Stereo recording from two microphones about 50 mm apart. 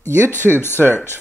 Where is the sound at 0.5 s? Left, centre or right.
Left.